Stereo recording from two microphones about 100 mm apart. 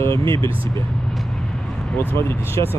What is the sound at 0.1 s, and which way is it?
Speech, 55° right (ahead or behind).